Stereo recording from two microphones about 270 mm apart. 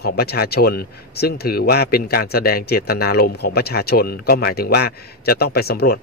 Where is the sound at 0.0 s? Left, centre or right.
Left.